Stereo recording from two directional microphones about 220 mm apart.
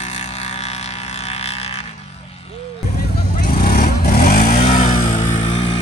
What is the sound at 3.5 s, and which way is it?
Vehicle, 40° left (ahead or behind).